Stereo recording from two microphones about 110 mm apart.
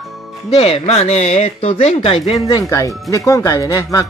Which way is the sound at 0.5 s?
65° left (ahead or behind).